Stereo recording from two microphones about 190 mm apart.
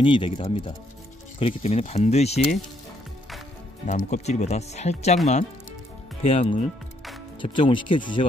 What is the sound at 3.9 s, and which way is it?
Speech, 40° left (ahead or behind).